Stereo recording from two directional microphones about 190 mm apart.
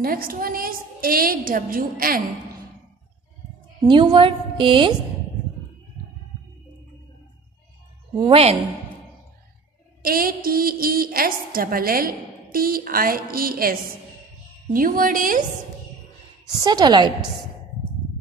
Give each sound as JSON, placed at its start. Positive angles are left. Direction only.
{"t": 0.0, "sound": "a woman's voice", "side_deg": -50}
{"t": 3.8, "sound": "a woman's voice", "side_deg": -25}
{"t": 8.3, "sound": "a woman's voice", "side_deg": -30}
{"t": 10.0, "sound": "a woman's voice", "side_deg": -50}
{"t": 16.6, "sound": "a woman's voice", "side_deg": -20}